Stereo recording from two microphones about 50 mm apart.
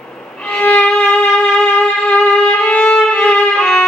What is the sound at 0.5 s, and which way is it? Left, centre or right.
Violin, left.